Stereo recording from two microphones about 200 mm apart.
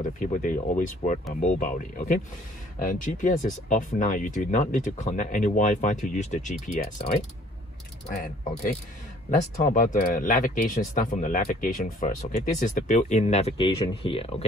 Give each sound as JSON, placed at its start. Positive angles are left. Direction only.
{"t": 0.2, "sound": "speech", "side_deg": 40}
{"t": 8.1, "sound": "speech", "side_deg": 40}